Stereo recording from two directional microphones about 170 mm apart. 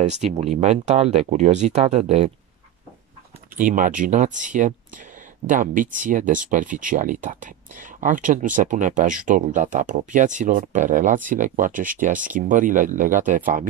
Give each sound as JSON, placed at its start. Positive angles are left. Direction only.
{"t": 0.0, "sound": "speech", "side_deg": -45}
{"t": 3.5, "sound": "speech", "side_deg": -50}